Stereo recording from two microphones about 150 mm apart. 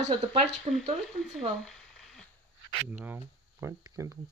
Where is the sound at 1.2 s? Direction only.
5° left (ahead or behind).